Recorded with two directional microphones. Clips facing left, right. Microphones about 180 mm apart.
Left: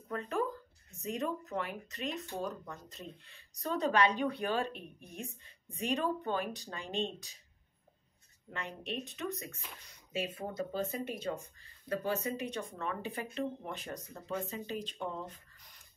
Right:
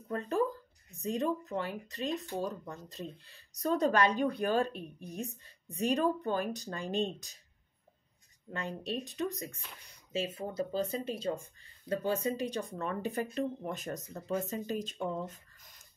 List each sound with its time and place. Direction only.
0.1 s speech: 35° right (ahead or behind)
8.5 s speech: 35° right (ahead or behind)